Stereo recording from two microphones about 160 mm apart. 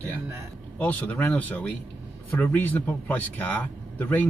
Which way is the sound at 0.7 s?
10° left (ahead or behind).